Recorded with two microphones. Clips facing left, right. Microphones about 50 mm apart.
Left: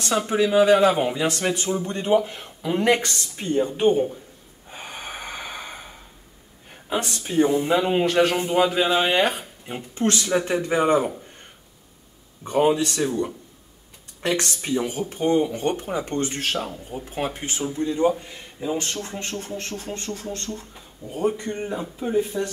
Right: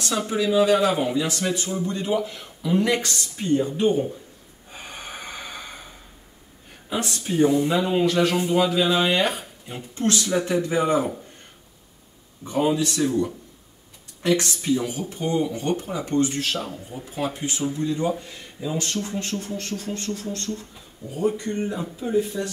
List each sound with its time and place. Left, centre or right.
0.3 s speech: left
2.1 s speech: left
4.6 s gasp: centre
7.3 s speech: left
12.4 s speech: left; by 22.4 s centre